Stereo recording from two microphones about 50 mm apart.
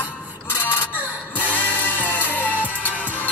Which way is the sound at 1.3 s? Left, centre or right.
Left.